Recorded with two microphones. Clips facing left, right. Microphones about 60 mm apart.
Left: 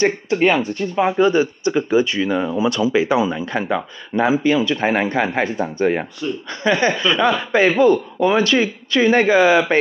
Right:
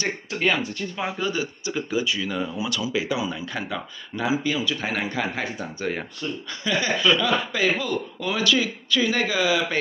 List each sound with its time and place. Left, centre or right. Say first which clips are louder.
0.0 s speech: left 9 dB; left